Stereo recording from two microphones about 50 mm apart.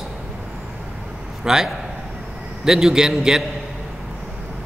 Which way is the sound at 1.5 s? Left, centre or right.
Centre.